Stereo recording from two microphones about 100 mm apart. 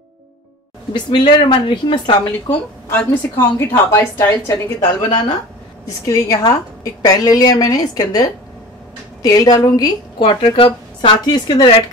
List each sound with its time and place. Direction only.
0.9 s speech: 50° left (ahead or behind)
2.9 s a woman's voice: 20° left (ahead or behind)
4.7 s speech: 50° left (ahead or behind)
6.0 s a woman's voice: 35° left (ahead or behind)
10.1 s a woman's voice: 65° left (ahead or behind)